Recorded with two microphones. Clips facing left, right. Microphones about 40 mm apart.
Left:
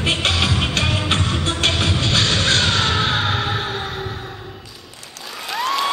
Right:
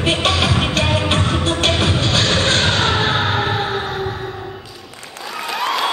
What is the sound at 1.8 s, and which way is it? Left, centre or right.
Music, right.